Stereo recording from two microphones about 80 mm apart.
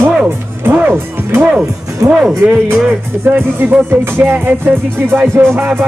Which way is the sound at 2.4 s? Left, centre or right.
Centre.